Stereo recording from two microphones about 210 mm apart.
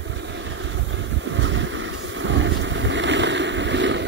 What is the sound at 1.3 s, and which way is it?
Boat, 65° right (ahead or behind).